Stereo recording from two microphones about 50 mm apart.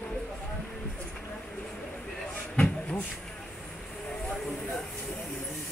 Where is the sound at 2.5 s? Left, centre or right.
Left.